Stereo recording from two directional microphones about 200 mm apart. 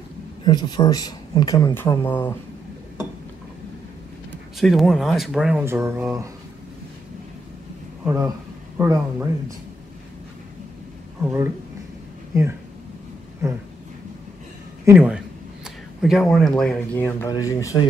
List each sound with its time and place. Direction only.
0.4 s speech: 20° left (ahead or behind)
4.3 s speech: centre (ahead or behind)
8.0 s a man's voice: 10° right (ahead or behind)
11.2 s speech: 10° right (ahead or behind)
13.4 s a sound: 15° right (ahead or behind)
14.9 s speech: 5° right (ahead or behind); by 17.8 s 15° left (ahead or behind)